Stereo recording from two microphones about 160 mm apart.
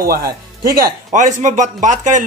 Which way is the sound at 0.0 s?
70° right (ahead or behind).